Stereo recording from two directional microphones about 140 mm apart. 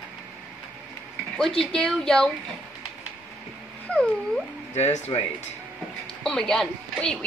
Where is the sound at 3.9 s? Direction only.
5° left (ahead or behind).